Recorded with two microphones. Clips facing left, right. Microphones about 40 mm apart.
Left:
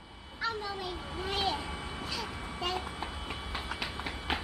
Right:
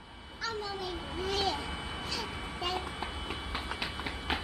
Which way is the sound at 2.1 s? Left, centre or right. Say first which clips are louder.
Even; centre.